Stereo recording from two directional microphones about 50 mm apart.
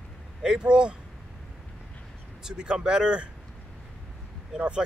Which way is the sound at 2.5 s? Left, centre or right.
Centre.